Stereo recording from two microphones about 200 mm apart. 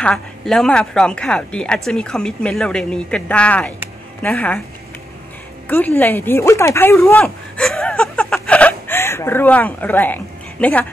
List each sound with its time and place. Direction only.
0.0 s a woman's voice: centre (ahead or behind)
5.7 s speech: 10° left (ahead or behind)